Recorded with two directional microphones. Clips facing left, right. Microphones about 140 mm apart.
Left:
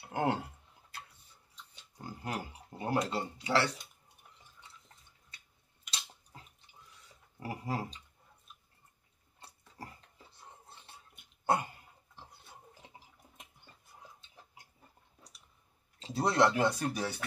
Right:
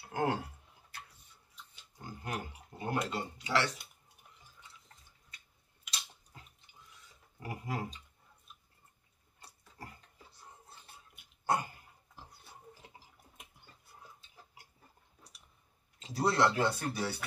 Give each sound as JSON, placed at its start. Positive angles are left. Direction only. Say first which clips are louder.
{"t": 0.1, "sound": "speech", "louder": "left 1 dB", "side_deg": 25}
{"t": 2.0, "sound": "a sound", "louder": "left 1 dB", "side_deg": 35}
{"t": 3.1, "sound": "speech", "louder": "left 2 dB", "side_deg": 30}
{"t": 5.9, "sound": "a sound", "louder": "left 1 dB", "side_deg": 35}
{"t": 7.3, "sound": "speech", "louder": "left 2 dB", "side_deg": 30}
{"t": 16.0, "sound": "speech", "louder": "left 1 dB", "side_deg": 25}